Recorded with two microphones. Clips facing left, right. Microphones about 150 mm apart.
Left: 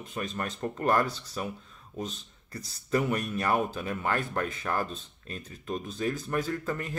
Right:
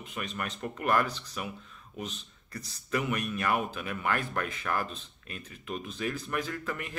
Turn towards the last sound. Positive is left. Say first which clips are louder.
# left 4 dB
turn(degrees=35)  # may be behind; listen again after turning